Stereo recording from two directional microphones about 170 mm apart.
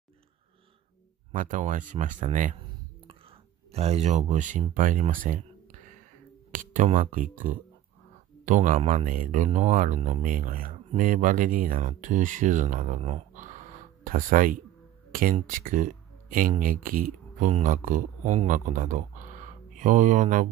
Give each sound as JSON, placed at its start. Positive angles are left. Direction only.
{"t": 1.3, "sound": "speech", "side_deg": -50}
{"t": 3.1, "sound": "a sound", "side_deg": -35}
{"t": 7.0, "sound": "speech", "side_deg": -50}